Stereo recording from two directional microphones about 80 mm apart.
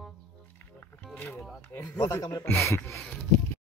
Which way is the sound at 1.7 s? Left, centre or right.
Left.